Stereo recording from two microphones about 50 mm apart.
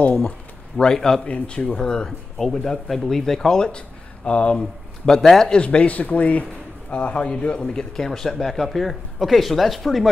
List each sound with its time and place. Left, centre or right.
0.7 s speech: centre
1.2 s speech: left
5.0 s speech: centre
5.6 s speech: left; by 10.0 s centre